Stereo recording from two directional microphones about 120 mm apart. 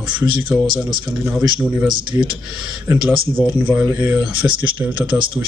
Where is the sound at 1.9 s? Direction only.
40° right (ahead or behind).